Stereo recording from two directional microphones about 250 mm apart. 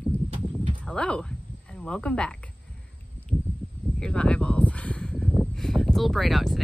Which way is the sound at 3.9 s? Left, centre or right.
Centre.